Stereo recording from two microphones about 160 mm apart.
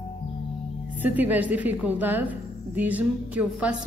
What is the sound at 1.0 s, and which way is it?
A woman's voice, 10° right (ahead or behind).